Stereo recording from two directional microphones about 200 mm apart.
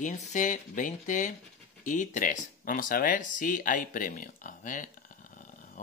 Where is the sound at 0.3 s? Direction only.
40° left (ahead or behind).